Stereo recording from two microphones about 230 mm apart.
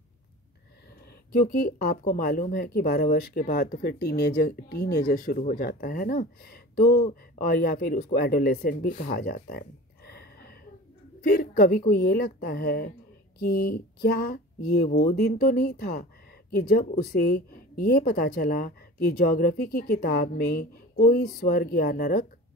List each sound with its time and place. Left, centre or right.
1.3 s speech: left
11.2 s a woman's voice: left